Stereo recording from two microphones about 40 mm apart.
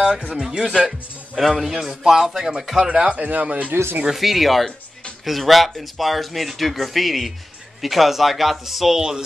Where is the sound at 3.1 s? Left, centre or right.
Right.